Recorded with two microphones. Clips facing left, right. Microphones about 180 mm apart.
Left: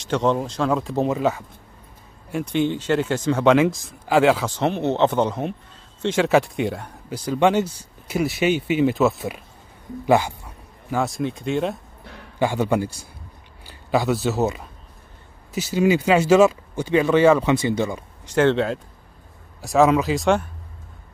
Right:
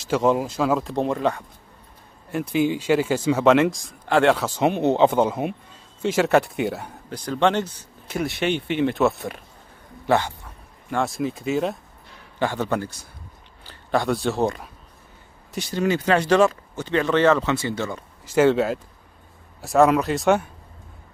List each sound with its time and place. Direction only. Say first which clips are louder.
0.0 s speech: right 1 dB; 5° right (ahead or behind)
4.5 s speech: right 2 dB; 10° right (ahead or behind)
7.1 s speech: left 2 dB; 10° left (ahead or behind)
12.4 s speech: left 3 dB; 10° left (ahead or behind)
18.2 s speech: right 1 dB; 5° right (ahead or behind)